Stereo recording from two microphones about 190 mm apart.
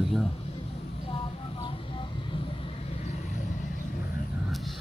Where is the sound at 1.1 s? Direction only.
30° left (ahead or behind).